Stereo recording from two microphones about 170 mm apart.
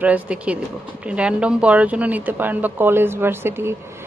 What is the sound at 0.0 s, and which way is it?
A woman's voice, 10° right (ahead or behind).